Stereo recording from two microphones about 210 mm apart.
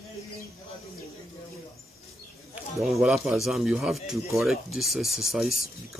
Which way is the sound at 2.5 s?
Centre (ahead or behind).